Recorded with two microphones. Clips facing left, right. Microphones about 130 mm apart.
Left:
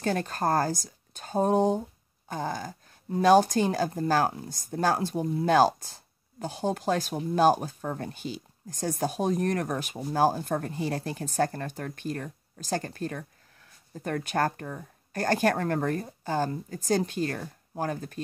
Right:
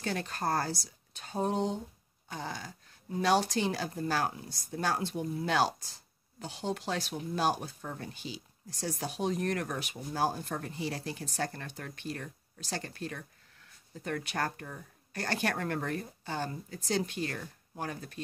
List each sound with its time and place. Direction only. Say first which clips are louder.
0.0 s speech: left 6 dB; 45° left (ahead or behind)